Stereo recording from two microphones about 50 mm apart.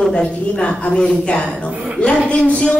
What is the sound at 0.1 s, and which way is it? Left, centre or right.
A woman's voice, centre.